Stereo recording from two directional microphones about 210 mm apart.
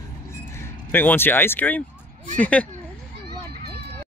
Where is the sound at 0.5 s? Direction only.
10° left (ahead or behind).